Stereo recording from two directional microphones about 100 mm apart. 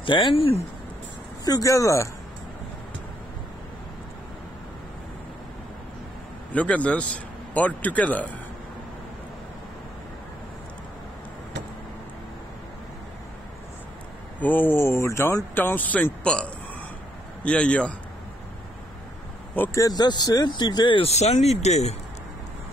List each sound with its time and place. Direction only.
0.0 s speech: 55° left (ahead or behind)
1.4 s speech: 35° left (ahead or behind)
6.5 s speech: 15° left (ahead or behind)
14.4 s speech: 20° left (ahead or behind)
19.6 s speech: 15° left (ahead or behind)
20.0 s speech: 40° left (ahead or behind)
21.0 s speech: 90° left